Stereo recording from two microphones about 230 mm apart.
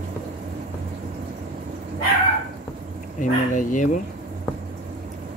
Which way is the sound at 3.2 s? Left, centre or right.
Left.